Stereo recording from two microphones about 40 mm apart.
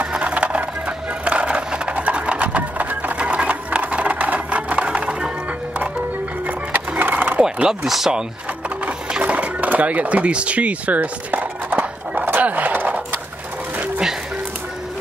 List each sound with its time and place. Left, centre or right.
0.1 s music: right
3.2 s sewing machine: right
6.4 s music: right
7.8 s speech: centre
9.2 s a sound: right